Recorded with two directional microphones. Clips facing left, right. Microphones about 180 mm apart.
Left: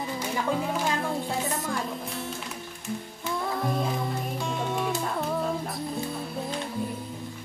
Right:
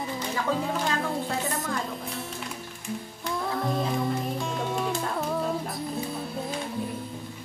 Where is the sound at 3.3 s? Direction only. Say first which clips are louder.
Even; centre (ahead or behind).